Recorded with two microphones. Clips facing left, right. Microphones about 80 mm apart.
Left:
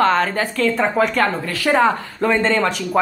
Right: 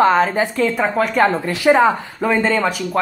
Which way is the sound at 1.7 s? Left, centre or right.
Centre.